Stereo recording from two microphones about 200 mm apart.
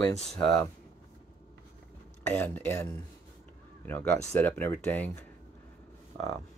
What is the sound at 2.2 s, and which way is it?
Speech, 10° left (ahead or behind).